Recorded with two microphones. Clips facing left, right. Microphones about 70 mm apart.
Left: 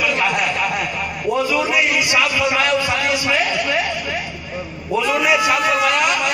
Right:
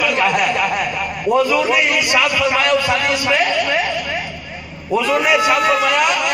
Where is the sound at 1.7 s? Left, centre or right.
Right.